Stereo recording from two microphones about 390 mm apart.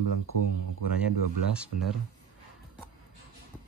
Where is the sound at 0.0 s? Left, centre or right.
Right.